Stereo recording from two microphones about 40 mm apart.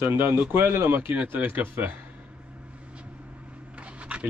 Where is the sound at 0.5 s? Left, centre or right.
Right.